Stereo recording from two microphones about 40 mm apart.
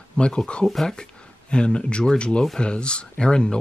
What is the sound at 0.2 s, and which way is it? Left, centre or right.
Speech, left.